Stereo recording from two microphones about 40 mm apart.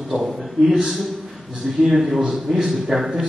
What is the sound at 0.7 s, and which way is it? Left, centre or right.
A man's voice, centre.